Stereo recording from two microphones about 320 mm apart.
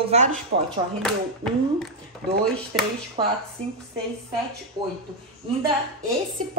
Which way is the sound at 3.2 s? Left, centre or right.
Centre.